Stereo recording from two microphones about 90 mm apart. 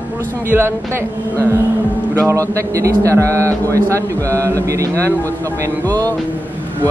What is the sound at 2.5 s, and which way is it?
A man's voice, 35° right (ahead or behind).